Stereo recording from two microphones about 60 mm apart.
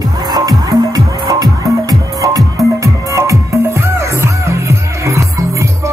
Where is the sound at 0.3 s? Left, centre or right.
Right.